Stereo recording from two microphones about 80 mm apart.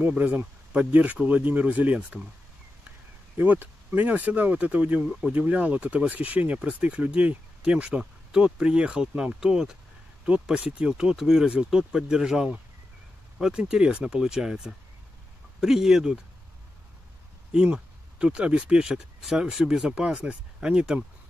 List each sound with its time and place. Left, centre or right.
0.0 s speech: right
3.3 s speech: right; by 16.2 s centre
17.7 s speech: centre